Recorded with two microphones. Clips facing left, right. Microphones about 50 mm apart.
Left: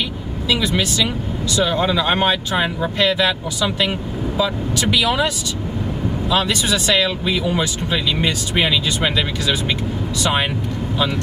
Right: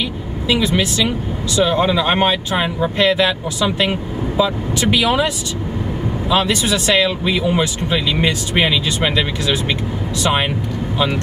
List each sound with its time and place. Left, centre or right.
0.5 s speech: right